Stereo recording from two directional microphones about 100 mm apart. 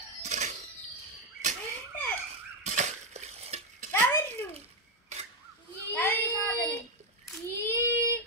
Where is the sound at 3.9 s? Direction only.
30° left (ahead or behind).